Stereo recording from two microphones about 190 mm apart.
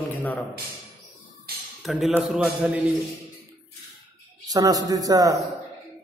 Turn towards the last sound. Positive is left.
turn(degrees=-20)  # may be behind; listen again after turning